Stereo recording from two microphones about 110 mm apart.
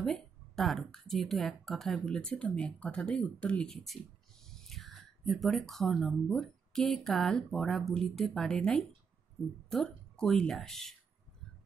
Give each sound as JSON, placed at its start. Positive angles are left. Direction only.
{"t": 0.0, "sound": "a woman's voice", "side_deg": 5}